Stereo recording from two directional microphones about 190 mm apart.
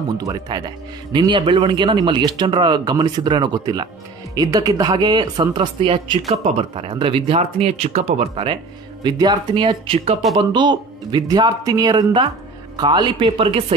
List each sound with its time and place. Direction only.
0.2 s a man's voice: 20° right (ahead or behind)